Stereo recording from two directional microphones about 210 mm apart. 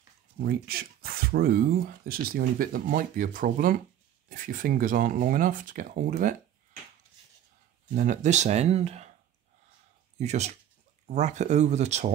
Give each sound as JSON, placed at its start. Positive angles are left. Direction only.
{"t": 0.4, "sound": "speech", "side_deg": -45}
{"t": 7.9, "sound": "speech", "side_deg": -35}
{"t": 10.1, "sound": "speech", "side_deg": -30}